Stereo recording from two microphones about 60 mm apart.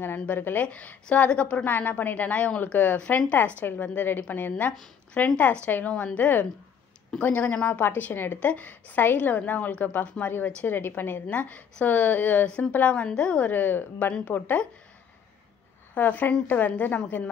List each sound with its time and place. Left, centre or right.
0.0 s a woman's voice: left
0.7 s a woman's voice: left
1.6 s a woman's voice: left
11.2 s a woman's voice: left
13.5 s a woman's voice: left
15.9 s a woman's voice: left